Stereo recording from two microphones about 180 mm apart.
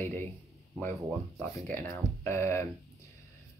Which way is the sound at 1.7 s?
15° left (ahead or behind).